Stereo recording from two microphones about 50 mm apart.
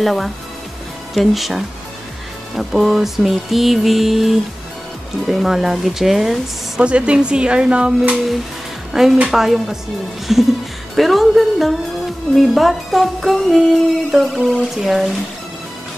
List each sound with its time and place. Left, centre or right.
0.0 s music: centre
6.8 s a woman's voice: right
8.9 s a woman's voice: centre
10.3 s music: centre